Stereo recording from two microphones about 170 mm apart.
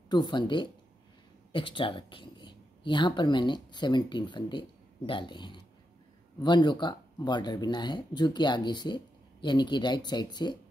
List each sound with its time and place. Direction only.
0.1 s speech: 25° left (ahead or behind)